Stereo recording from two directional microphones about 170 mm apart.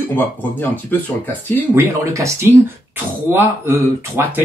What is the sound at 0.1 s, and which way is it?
Speech, 10° left (ahead or behind).